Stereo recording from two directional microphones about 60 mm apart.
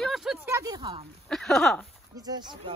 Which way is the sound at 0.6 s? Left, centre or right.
Right.